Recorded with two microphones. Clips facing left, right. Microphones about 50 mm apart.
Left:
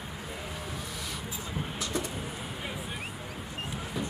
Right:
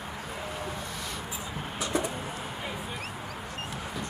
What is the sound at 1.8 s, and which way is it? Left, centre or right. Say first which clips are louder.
Vehicle: right 6 dB; right.